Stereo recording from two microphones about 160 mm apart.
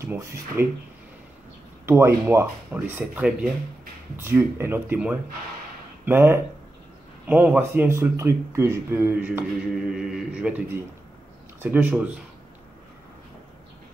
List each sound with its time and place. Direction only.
0.0 s speech: 15° right (ahead or behind)
1.9 s speech: 15° right (ahead or behind)
9.8 s mantra: 5° right (ahead or behind)
11.6 s speech: 10° right (ahead or behind)